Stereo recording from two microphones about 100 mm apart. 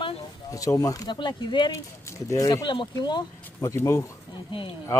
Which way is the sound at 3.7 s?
25° left (ahead or behind).